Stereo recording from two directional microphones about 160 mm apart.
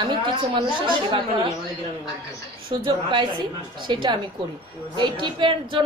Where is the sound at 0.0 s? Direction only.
30° right (ahead or behind).